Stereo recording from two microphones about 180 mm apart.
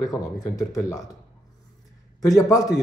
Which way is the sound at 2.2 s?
20° left (ahead or behind).